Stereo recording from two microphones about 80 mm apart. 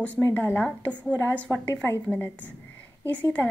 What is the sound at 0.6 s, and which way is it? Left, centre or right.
A woman's voice, centre.